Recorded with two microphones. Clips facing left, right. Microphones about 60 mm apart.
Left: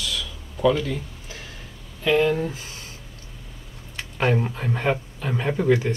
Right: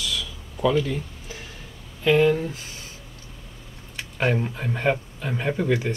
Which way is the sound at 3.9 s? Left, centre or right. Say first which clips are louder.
Left 1 dB; centre.